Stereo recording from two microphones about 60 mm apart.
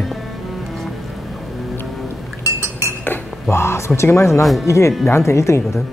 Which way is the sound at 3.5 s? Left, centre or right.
Left.